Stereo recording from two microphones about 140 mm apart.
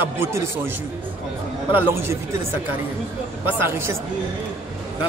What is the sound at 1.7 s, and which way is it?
Speech, 20° right (ahead or behind).